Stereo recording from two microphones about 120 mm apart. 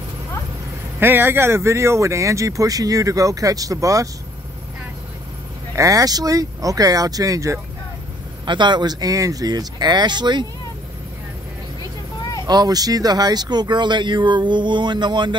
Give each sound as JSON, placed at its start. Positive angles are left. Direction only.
{"t": 0.9, "sound": "speech", "side_deg": -20}
{"t": 5.8, "sound": "speech", "side_deg": -30}
{"t": 8.5, "sound": "speech", "side_deg": -40}
{"t": 12.4, "sound": "speech", "side_deg": -35}